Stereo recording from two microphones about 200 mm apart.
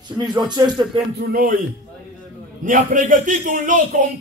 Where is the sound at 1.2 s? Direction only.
45° right (ahead or behind).